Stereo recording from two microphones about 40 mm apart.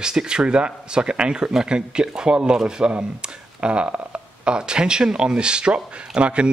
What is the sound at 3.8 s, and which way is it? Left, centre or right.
Speech, right.